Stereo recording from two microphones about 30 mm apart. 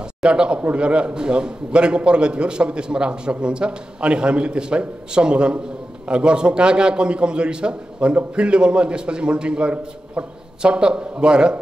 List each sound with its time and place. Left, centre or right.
0.2 s a man's voice: right